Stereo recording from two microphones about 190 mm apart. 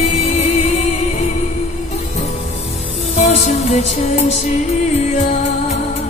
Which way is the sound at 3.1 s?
35° left (ahead or behind).